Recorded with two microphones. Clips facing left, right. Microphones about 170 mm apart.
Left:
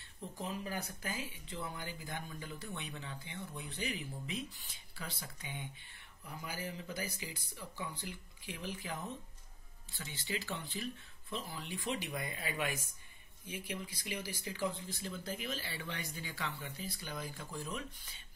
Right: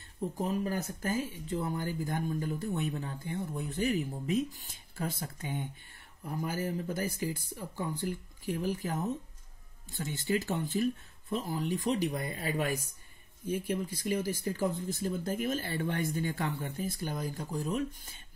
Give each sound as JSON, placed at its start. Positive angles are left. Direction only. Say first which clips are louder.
{"t": 0.2, "sound": "speech", "louder": "right 9 dB", "side_deg": -45}